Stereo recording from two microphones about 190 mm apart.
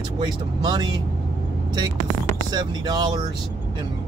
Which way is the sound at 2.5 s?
20° right (ahead or behind).